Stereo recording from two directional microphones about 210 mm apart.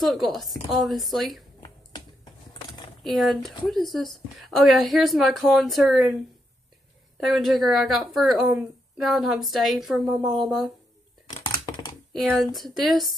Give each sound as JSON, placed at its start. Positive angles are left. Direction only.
{"t": 0.0, "sound": "a woman's voice", "side_deg": 0}
{"t": 1.6, "sound": "finger snapping", "side_deg": 20}
{"t": 3.0, "sound": "a woman's voice", "side_deg": 0}
{"t": 7.2, "sound": "a woman's voice", "side_deg": 0}
{"t": 11.3, "sound": "computer keyboard", "side_deg": 20}
{"t": 12.1, "sound": "a woman's voice", "side_deg": 0}